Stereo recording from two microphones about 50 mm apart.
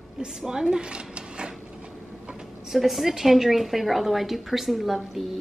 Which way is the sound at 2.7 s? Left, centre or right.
Centre.